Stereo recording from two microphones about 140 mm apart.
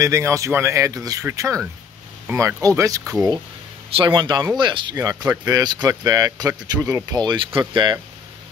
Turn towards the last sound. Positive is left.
turn(degrees=-35)  # may be behind; listen again after turning